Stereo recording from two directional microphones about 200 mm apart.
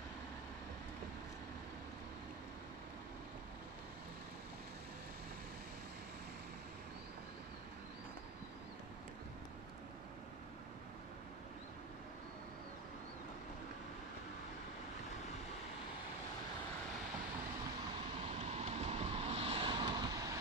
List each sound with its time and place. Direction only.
18.5 s vehicle: 30° right (ahead or behind)